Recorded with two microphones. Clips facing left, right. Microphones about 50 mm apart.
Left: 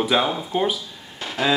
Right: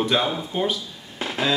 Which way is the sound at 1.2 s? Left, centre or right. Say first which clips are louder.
Right 3 dB; centre.